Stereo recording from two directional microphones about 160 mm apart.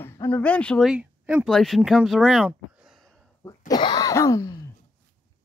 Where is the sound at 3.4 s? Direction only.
20° left (ahead or behind).